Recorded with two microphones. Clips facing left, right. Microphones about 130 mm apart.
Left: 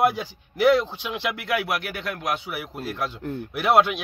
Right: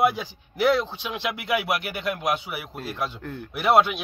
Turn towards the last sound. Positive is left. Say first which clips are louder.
# even
turn(degrees=0)  # may be behind; listen again after turning